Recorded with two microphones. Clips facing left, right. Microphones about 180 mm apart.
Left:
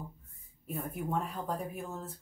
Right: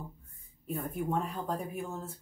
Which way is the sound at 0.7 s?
Centre (ahead or behind).